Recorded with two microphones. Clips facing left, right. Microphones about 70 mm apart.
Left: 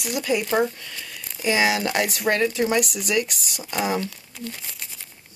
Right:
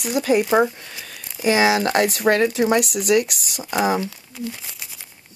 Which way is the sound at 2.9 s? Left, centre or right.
Right.